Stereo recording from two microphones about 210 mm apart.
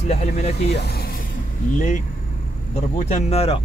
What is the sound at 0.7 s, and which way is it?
Speech, 50° left (ahead or behind).